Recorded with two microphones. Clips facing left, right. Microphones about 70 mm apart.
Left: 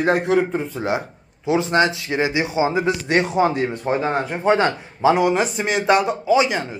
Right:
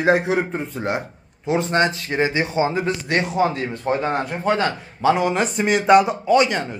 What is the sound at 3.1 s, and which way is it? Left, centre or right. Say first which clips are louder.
Speech: left 2 dB; left.